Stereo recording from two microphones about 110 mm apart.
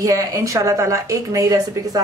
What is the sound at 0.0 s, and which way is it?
Speech, 30° right (ahead or behind).